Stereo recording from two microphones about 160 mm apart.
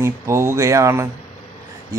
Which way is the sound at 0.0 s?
15° right (ahead or behind).